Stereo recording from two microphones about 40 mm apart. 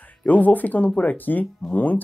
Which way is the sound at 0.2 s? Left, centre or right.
Left.